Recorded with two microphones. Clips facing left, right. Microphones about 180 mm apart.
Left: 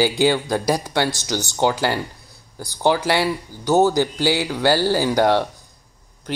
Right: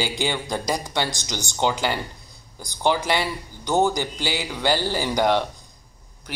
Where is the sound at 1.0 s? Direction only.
15° right (ahead or behind).